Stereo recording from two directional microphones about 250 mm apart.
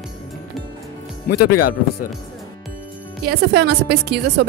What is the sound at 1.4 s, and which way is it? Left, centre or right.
Speech, left.